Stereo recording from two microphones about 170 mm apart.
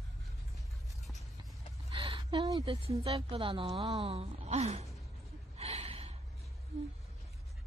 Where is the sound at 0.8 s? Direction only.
Centre (ahead or behind).